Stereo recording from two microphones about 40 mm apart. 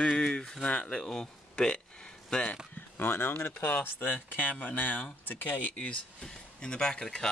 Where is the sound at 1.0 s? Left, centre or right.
Centre.